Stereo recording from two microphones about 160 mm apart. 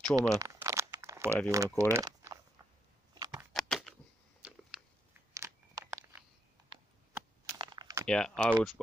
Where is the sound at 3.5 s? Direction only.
Centre (ahead or behind).